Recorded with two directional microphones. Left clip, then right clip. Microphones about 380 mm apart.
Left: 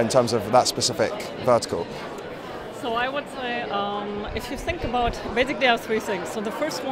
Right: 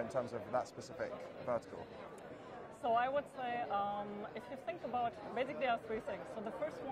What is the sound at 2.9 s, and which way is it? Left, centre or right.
Speech, right.